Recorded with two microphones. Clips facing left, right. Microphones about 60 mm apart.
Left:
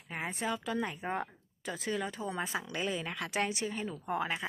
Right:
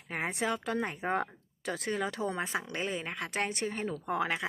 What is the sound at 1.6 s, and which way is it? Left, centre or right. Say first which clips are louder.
Speech: right 4 dB; right.